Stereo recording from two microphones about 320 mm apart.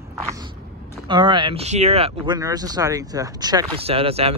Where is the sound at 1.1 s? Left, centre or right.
Centre.